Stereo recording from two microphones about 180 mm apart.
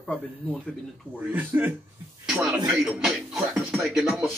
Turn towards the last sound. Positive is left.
turn(degrees=0)  # may be behind; listen again after turning